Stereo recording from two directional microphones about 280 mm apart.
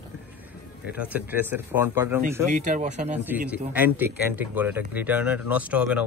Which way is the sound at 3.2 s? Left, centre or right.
Centre.